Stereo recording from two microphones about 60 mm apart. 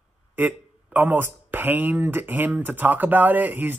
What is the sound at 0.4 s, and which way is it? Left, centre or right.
Speech, right.